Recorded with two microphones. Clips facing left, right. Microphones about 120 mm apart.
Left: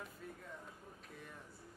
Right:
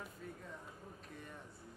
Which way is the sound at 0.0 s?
Centre (ahead or behind).